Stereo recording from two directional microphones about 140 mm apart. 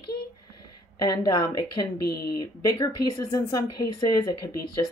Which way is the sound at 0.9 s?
30° left (ahead or behind).